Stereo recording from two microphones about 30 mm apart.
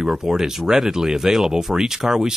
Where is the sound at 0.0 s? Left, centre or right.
Centre.